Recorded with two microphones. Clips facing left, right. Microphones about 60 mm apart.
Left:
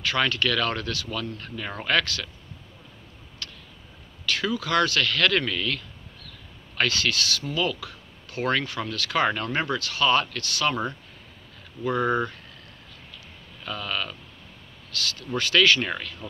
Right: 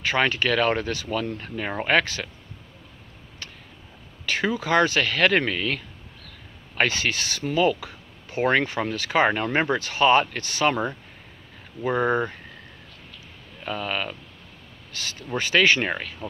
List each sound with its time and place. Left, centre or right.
0.0 s speech: right
3.4 s a sound: right
4.3 s speech: right
13.7 s speech: right